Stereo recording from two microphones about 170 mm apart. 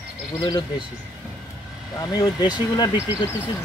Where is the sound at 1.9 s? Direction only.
20° left (ahead or behind).